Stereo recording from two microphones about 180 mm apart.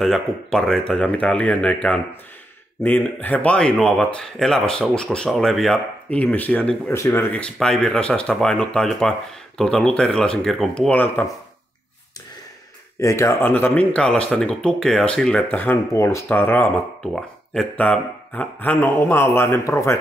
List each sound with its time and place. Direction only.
0.0 s speech: centre (ahead or behind)
13.0 s speech: 15° left (ahead or behind)